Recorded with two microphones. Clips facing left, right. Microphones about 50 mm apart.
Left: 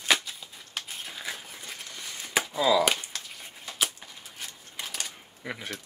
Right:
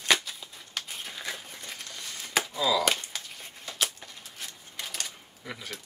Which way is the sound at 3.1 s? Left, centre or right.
Centre.